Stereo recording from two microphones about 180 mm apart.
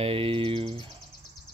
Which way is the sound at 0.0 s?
30° right (ahead or behind).